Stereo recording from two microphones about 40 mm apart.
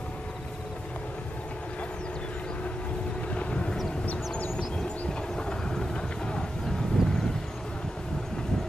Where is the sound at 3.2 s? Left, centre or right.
Left.